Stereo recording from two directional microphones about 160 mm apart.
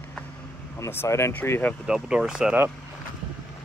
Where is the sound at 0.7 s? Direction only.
20° left (ahead or behind).